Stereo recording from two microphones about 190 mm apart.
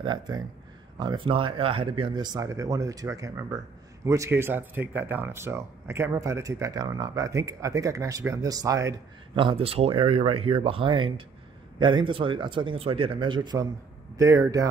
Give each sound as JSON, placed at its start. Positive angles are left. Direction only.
{"t": 0.0, "sound": "speech", "side_deg": -20}